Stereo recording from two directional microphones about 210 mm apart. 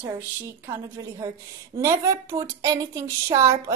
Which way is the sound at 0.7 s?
15° right (ahead or behind).